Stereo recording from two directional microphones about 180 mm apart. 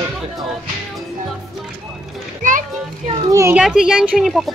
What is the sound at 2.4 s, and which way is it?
Music, 45° right (ahead or behind).